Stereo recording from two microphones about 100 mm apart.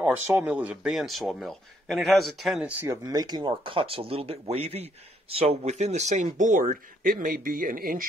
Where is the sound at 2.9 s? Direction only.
35° right (ahead or behind); by 5.7 s 85° right.